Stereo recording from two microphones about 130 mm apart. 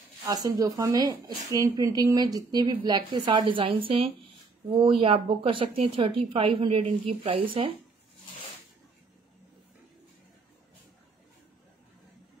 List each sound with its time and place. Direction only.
0.2 s speech: 25° right (ahead or behind); by 7.7 s 45° right (ahead or behind)